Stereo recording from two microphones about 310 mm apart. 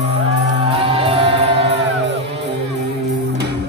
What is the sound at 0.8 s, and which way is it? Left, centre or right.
Music, centre.